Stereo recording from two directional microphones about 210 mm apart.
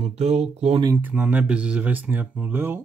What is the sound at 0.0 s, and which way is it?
Speech, 30° right (ahead or behind).